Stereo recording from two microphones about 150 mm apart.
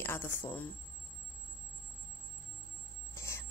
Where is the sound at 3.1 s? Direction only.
15° left (ahead or behind).